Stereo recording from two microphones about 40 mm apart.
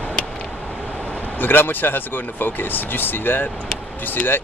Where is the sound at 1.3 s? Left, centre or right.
Left.